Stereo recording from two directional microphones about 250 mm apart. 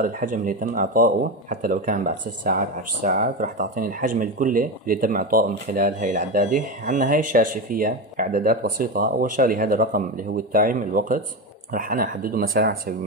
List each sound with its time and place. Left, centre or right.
0.0 s speech: right